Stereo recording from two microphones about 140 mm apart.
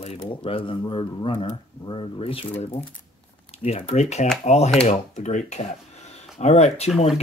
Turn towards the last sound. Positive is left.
turn(degrees=50)  # may be behind; listen again after turning